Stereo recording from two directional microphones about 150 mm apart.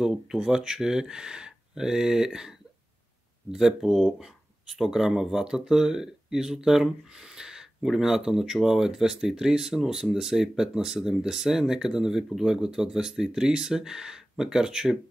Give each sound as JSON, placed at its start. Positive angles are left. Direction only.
{"t": 0.0, "sound": "speech", "side_deg": -5}
{"t": 3.5, "sound": "speech", "side_deg": 0}